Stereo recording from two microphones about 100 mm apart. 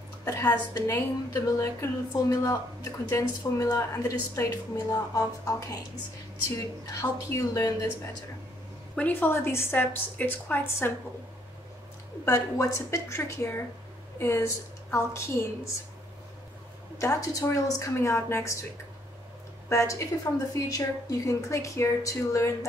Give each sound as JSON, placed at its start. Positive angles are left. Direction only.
{"t": 0.2, "sound": "speech", "side_deg": 35}
{"t": 0.9, "sound": "speech", "side_deg": 30}
{"t": 8.9, "sound": "a woman's voice", "side_deg": 15}
{"t": 12.3, "sound": "a woman's voice", "side_deg": 30}
{"t": 17.0, "sound": "speech", "side_deg": 30}
{"t": 19.7, "sound": "a woman's voice", "side_deg": 30}